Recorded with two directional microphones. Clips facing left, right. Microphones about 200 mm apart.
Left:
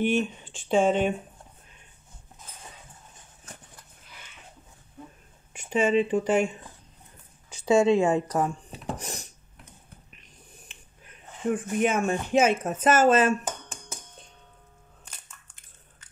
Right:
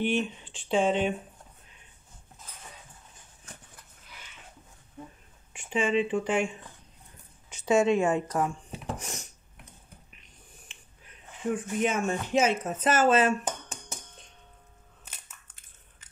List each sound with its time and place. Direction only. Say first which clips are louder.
0.0 s speech: left 3 dB; 45° left (ahead or behind)
5.5 s speech: left 4 dB; 40° left (ahead or behind)
7.6 s a woman's voice: left 3 dB; 30° left (ahead or behind)
8.9 s a sound: left 2 dB; 35° left (ahead or behind)
11.5 s speech: left 3 dB; 50° left (ahead or behind)